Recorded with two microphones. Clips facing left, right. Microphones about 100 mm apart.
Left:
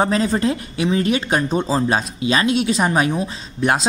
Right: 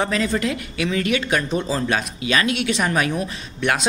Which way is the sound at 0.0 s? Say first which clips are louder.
Left 4 dB; 35° left (ahead or behind).